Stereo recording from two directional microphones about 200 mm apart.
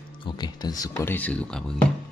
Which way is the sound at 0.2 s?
20° left (ahead or behind).